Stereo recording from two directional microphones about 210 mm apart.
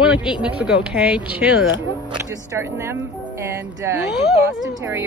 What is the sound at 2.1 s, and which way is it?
Speech, 15° right (ahead or behind).